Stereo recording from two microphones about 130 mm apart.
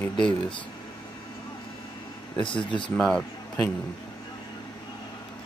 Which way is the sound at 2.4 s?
40° left (ahead or behind).